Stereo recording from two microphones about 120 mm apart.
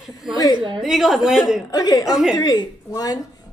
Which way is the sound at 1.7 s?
30° left (ahead or behind).